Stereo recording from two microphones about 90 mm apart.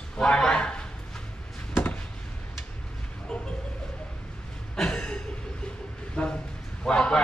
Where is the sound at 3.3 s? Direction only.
10° left (ahead or behind).